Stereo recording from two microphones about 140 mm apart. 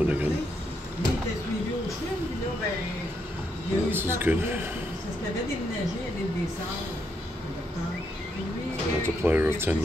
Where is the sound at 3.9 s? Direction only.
15° right (ahead or behind).